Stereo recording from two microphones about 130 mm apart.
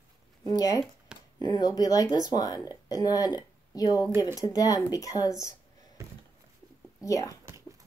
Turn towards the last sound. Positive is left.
turn(degrees=25)  # may be behind; listen again after turning